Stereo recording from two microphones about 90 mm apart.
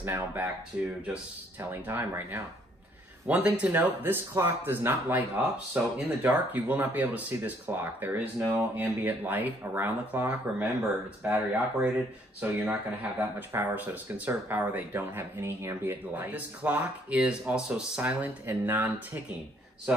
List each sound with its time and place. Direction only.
0.0 s speech: 25° right (ahead or behind)
1.6 s speech: 25° right (ahead or behind)